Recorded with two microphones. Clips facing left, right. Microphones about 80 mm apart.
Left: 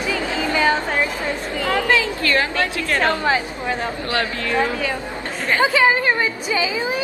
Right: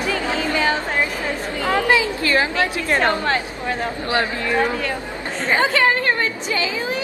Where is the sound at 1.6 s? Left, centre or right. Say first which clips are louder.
Right 1 dB; centre.